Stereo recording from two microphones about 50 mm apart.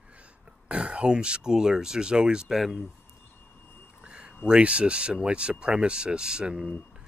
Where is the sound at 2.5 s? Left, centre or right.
Centre.